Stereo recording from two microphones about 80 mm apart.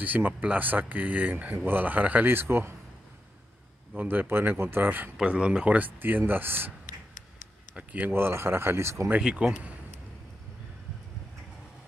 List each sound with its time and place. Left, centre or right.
0.0 s speech: right
3.9 s speech: right
5.1 s speech: centre
7.7 s speech: centre
8.1 s speech: right
9.2 s speech: centre